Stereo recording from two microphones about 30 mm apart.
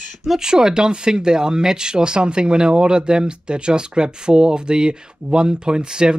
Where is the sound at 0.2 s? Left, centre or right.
Centre.